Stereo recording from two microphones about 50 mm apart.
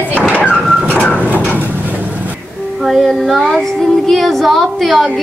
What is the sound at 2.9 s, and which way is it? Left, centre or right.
Child singing, centre.